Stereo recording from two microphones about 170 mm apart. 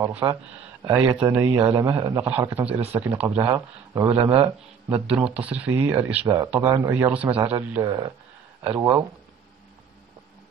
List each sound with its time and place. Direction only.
0.0 s speech: 15° right (ahead or behind)
1.6 s speech: 25° right (ahead or behind)
2.2 s speech: 10° right (ahead or behind)
4.9 s speech: 5° right (ahead or behind)
6.2 s speech: 20° right (ahead or behind)